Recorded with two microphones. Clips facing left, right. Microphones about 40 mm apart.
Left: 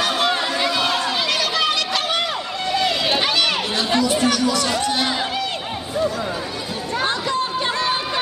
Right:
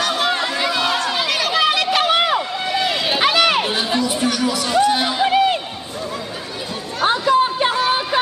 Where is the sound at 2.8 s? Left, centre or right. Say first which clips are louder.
Right 2 dB; centre.